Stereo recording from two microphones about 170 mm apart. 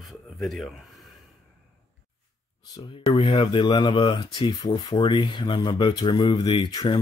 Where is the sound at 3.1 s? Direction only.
35° left (ahead or behind).